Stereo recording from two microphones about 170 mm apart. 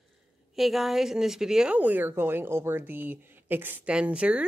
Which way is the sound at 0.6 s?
Centre (ahead or behind).